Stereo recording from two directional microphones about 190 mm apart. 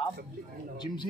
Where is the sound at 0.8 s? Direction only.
25° left (ahead or behind).